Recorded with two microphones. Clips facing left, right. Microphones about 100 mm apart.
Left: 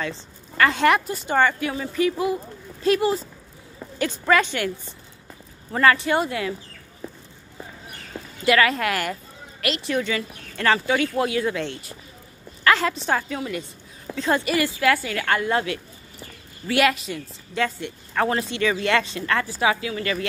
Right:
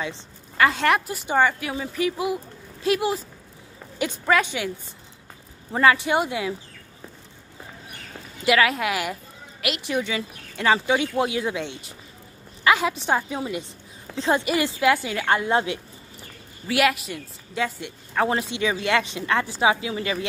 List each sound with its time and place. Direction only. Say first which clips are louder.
0.0 s a woman's voice: left 1 dB; 15° right (ahead or behind)
0.7 s speech: left 3 dB; centre (ahead or behind)
8.5 s speech: left 1 dB; 5° right (ahead or behind)
12.6 s a sound: even; 10° right (ahead or behind)
13.0 s a woman's voice: even; 20° right (ahead or behind)
16.6 s speech: left 1 dB; 5° right (ahead or behind)